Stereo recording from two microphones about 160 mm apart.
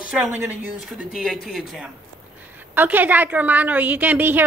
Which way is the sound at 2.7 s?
10° right (ahead or behind).